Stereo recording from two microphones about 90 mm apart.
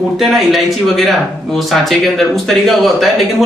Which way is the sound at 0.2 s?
Centre (ahead or behind).